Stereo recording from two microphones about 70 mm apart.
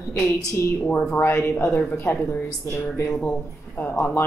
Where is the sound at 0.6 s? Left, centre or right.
Left.